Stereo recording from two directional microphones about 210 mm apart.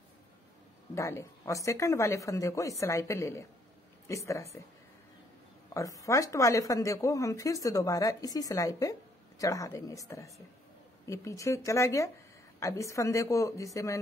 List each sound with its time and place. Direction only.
0.9 s speech: 10° left (ahead or behind)
5.7 s speech: 15° left (ahead or behind)